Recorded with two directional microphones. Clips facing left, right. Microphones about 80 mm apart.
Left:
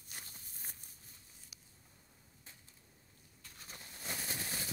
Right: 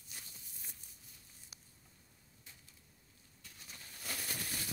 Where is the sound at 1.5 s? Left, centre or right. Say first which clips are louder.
Right 2 dB; right.